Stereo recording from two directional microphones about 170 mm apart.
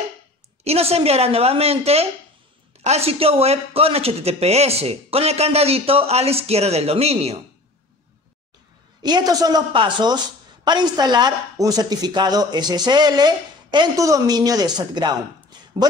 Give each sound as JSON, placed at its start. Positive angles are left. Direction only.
{"t": 0.7, "sound": "a man's voice", "side_deg": -35}
{"t": 9.0, "sound": "speech", "side_deg": -25}